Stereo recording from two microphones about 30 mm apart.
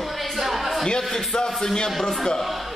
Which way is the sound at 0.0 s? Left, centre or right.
Centre.